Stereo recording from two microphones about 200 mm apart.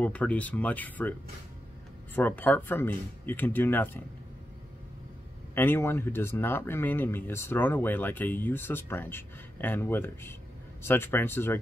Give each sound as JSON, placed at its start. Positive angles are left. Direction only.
{"t": 0.0, "sound": "speech", "side_deg": 5}
{"t": 2.1, "sound": "speech", "side_deg": 10}
{"t": 5.5, "sound": "speech", "side_deg": 10}